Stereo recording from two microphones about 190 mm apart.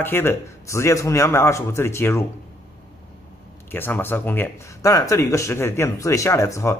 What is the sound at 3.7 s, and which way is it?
A man's voice, 10° left (ahead or behind).